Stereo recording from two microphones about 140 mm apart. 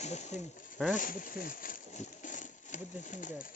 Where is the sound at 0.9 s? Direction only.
75° left (ahead or behind).